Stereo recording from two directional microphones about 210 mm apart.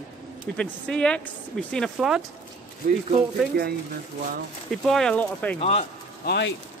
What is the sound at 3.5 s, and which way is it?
Speech, 45° right (ahead or behind).